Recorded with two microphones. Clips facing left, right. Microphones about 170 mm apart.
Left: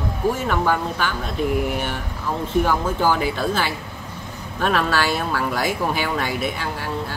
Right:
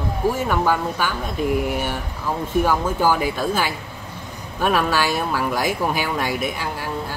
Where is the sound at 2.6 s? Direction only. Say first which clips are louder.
Right 3 dB; 10° right (ahead or behind).